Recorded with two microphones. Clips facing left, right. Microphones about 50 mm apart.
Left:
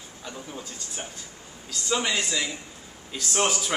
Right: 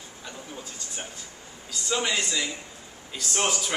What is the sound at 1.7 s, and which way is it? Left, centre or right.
A man's voice, centre.